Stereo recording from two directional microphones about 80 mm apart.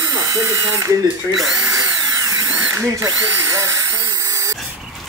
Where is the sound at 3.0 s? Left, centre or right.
Right.